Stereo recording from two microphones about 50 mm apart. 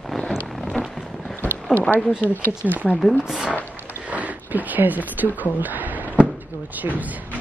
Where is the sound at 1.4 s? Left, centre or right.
Left.